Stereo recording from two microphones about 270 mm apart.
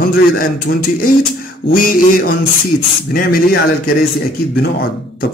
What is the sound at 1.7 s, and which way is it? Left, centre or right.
Speech, left.